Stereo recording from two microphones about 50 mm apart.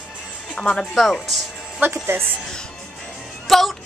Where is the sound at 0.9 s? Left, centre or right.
Centre.